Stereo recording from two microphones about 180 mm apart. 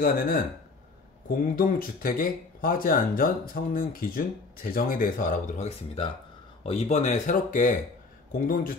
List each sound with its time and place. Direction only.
0.0 s speech: 50° left (ahead or behind)